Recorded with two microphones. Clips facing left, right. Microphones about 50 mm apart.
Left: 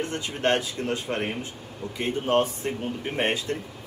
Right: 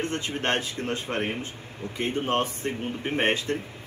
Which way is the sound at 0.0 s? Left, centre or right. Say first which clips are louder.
Left 2 dB; right.